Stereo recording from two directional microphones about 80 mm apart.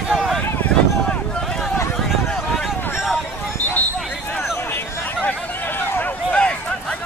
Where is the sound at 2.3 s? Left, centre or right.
Centre.